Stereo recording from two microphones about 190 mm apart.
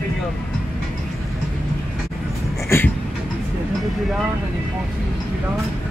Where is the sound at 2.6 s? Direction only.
10° left (ahead or behind).